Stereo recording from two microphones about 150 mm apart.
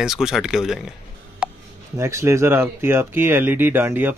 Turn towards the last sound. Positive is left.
turn(degrees=-15)  # may be behind; listen again after turning